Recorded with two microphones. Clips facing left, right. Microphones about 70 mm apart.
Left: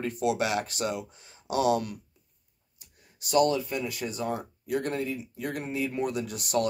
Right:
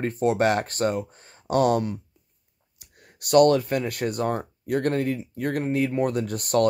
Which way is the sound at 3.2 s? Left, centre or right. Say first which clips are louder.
Right 7 dB; right.